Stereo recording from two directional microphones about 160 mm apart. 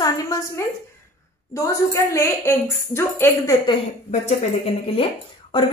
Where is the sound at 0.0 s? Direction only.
20° left (ahead or behind).